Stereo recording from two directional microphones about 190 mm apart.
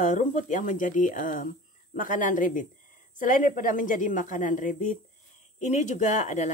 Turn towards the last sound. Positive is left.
turn(degrees=40)  # may be behind; listen again after turning